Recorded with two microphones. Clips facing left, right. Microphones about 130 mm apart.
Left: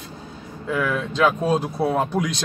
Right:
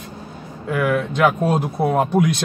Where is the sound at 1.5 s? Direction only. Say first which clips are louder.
Right 1 dB; 15° right (ahead or behind).